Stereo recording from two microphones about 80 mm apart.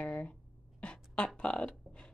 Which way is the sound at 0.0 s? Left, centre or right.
Centre.